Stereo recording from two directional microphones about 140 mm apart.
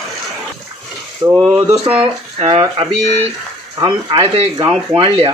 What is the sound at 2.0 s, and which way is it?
Speech, 45° right (ahead or behind).